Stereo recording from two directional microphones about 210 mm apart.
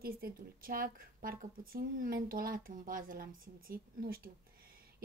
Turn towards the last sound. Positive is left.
turn(degrees=-45)  # may be behind; listen again after turning